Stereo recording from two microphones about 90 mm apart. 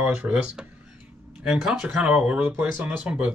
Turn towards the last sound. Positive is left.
turn(degrees=-15)  # may be behind; listen again after turning